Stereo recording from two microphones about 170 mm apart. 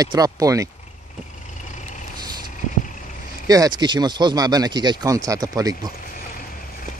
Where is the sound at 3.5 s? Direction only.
25° right (ahead or behind).